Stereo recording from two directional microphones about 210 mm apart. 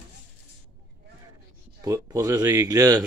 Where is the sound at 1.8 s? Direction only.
15° right (ahead or behind).